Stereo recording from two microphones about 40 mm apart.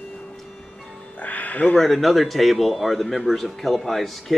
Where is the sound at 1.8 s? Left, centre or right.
Centre.